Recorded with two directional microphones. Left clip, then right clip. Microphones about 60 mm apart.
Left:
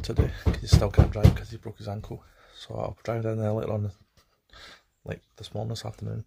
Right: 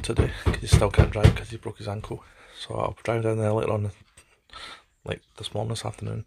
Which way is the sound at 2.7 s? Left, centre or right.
Centre.